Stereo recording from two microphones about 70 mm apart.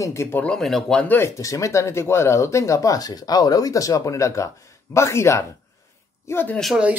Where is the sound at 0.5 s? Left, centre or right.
Centre.